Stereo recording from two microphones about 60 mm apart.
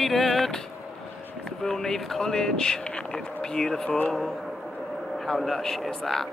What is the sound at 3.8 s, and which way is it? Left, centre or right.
Speech, left.